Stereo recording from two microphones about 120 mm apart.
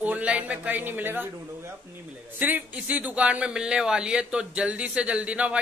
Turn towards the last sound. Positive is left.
turn(degrees=-10)  # may be behind; listen again after turning